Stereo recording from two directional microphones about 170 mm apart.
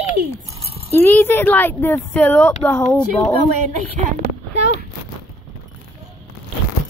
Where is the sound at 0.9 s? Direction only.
10° left (ahead or behind).